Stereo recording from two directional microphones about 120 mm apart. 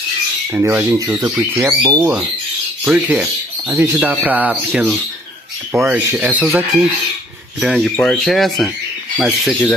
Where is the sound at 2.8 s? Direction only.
10° right (ahead or behind).